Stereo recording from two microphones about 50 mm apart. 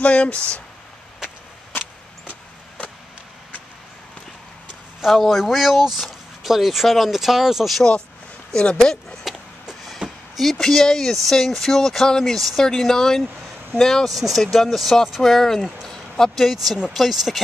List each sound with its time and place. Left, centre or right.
0.0 s speech: left
5.0 s speech: centre
8.5 s speech: centre
9.2 s a sound: centre
10.4 s speech: centre